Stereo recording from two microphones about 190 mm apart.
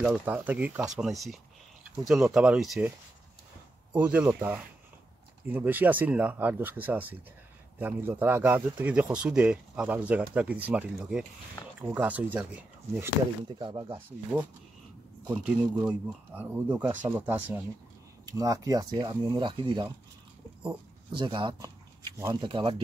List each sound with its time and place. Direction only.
0.0 s speech: 5° right (ahead or behind)
3.9 s speech: 5° right (ahead or behind)
13.6 s speech: 25° right (ahead or behind)
14.3 s speech: 10° right (ahead or behind); by 19.9 s 25° right (ahead or behind)
21.1 s speech: 25° right (ahead or behind)